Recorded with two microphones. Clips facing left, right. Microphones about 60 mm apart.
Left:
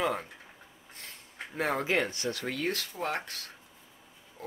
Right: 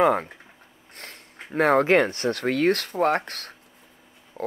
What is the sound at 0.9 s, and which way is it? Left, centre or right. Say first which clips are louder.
Speech: right 4 dB; right.